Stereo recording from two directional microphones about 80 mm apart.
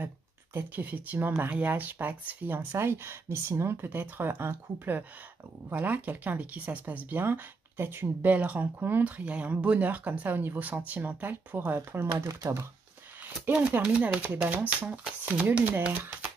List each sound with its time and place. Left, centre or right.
0.0 s speech: right
13.5 s speech: centre